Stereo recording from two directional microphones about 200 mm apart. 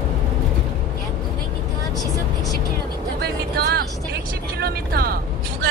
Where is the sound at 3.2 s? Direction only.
50° right (ahead or behind).